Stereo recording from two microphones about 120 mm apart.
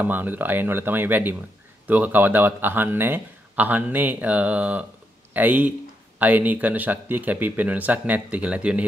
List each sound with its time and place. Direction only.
0.0 s a man's voice: 15° right (ahead or behind)